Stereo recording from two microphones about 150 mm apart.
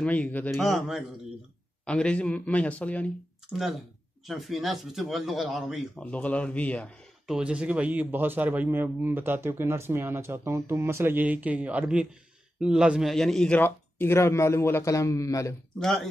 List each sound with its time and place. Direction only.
0.0 s a man's voice: 10° left (ahead or behind)
4.3 s speech: centre (ahead or behind)
7.2 s a man's voice: 5° right (ahead or behind); by 15.5 s 20° left (ahead or behind)